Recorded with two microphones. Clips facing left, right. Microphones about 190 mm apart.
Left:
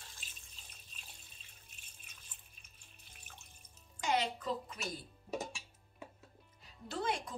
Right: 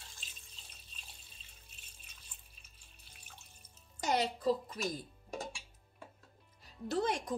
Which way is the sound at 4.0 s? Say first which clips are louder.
Right 2 dB; 40° right (ahead or behind).